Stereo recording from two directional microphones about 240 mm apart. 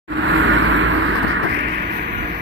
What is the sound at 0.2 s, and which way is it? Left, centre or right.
Vehicle, right.